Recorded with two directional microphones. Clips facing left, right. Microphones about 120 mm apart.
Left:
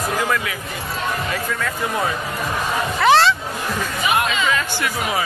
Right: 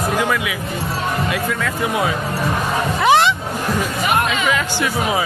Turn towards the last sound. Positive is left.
turn(degrees=-15)  # may be behind; listen again after turning